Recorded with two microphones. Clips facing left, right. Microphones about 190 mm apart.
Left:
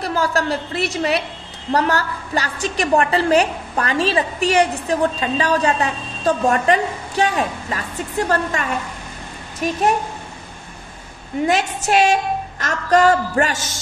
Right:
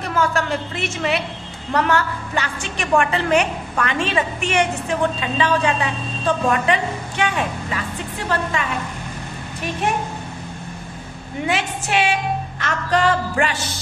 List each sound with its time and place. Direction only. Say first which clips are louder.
0.0 s a woman's voice: left 1 dB; 35° left (ahead or behind)
11.4 s a woman's voice: left 4 dB; 40° left (ahead or behind)